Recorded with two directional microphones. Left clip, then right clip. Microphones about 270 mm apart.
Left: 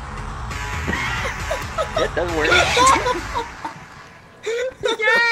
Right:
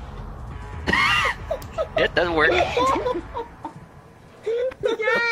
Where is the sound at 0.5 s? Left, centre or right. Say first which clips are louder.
Left 14 dB; left.